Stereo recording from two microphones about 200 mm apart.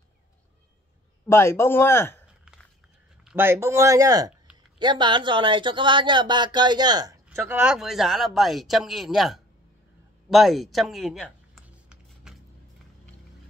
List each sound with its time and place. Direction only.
1.2 s speech: 10° left (ahead or behind)
3.3 s speech: 10° right (ahead or behind)
10.3 s a sound: centre (ahead or behind)